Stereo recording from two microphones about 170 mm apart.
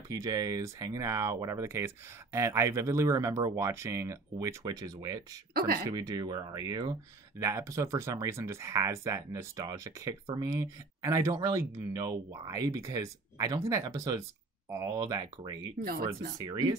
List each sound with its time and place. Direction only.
0.1 s speech: 20° right (ahead or behind)
5.5 s speech: 65° right (ahead or behind)
5.9 s speech: 20° right (ahead or behind)
15.8 s speech: 60° right (ahead or behind)
16.3 s speech: 25° right (ahead or behind)